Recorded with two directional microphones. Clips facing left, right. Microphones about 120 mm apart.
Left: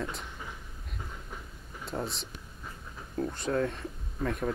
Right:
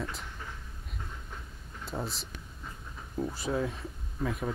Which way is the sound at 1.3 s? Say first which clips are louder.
Left 1 dB; centre (ahead or behind).